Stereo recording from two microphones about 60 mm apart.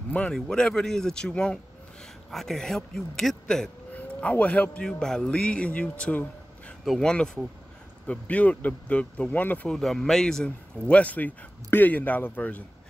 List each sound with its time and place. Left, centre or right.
0.3 s speech: centre
3.9 s speech: left
8.1 s speech: left
9.7 s speech: centre; by 12.6 s left